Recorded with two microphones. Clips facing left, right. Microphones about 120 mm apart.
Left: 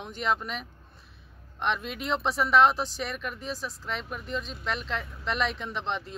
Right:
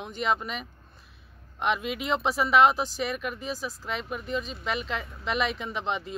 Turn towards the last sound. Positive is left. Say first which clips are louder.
# right 2 dB
turn(degrees=-5)  # may be behind; listen again after turning